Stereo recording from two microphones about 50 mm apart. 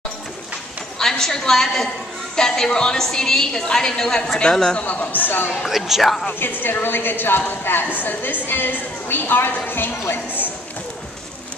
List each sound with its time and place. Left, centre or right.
0.9 s a woman's voice: centre
4.7 s a man's voice: left
5.7 s speech: centre
6.6 s a woman's voice: left